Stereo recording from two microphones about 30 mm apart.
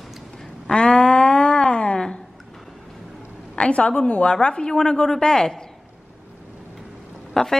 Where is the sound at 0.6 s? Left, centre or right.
Left.